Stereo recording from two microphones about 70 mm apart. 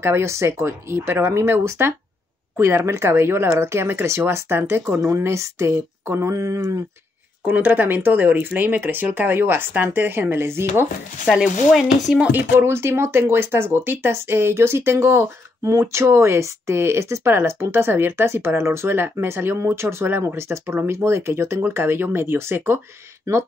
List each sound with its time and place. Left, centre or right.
0.0 s speech: right
7.4 s speech: right
11.4 s chopping: centre
12.3 s speech: right